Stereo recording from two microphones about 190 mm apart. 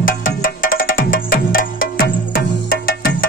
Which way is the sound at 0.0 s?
45° left (ahead or behind).